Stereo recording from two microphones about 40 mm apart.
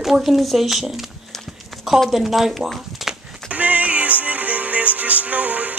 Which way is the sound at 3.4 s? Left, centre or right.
Right.